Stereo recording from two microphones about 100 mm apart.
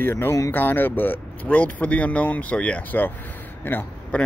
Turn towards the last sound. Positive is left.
turn(degrees=20)  # may be behind; listen again after turning